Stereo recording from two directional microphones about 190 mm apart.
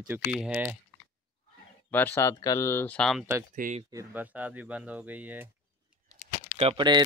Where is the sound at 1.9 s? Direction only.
10° left (ahead or behind).